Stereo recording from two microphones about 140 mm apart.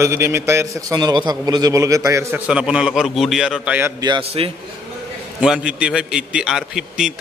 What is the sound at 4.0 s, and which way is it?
Speech, 35° right (ahead or behind).